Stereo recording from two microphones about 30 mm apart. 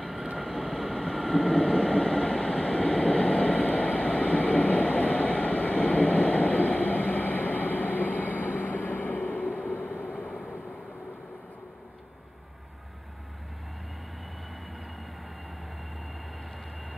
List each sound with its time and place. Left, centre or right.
0.0 s vehicle: centre
0.9 s vehicle: centre
1.5 s vehicle: left